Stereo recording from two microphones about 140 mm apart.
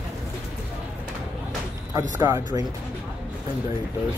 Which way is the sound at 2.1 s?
20° right (ahead or behind).